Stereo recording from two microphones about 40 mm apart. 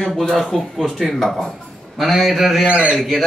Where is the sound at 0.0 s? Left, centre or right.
Centre.